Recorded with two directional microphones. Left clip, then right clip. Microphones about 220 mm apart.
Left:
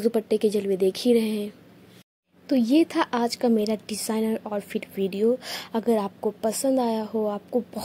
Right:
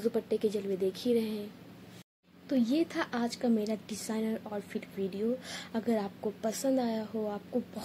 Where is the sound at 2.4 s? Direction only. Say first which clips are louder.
Left 9 dB; 35° left (ahead or behind).